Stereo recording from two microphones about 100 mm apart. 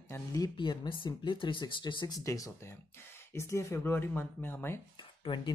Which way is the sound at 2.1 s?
35° left (ahead or behind).